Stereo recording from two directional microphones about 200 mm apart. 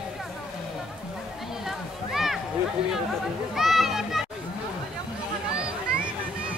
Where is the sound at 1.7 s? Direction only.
Centre (ahead or behind).